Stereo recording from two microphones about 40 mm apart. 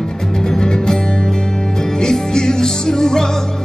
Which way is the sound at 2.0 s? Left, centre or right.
Centre.